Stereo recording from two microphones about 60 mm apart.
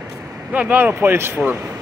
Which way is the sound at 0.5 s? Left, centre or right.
Right.